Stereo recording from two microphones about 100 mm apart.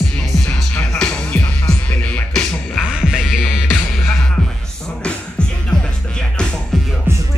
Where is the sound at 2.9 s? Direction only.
10° right (ahead or behind).